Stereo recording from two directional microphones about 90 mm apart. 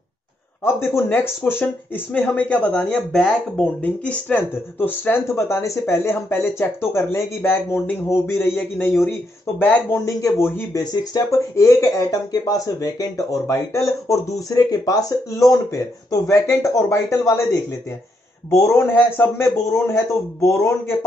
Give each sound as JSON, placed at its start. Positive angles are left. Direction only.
{"t": 0.7, "sound": "speech", "side_deg": 25}
{"t": 3.1, "sound": "speech", "side_deg": 0}
{"t": 3.5, "sound": "speech", "side_deg": 15}
{"t": 9.9, "sound": "speech", "side_deg": 30}
{"t": 10.7, "sound": "speech", "side_deg": 45}
{"t": 18.9, "sound": "speech", "side_deg": 20}
{"t": 19.4, "sound": "speech", "side_deg": 30}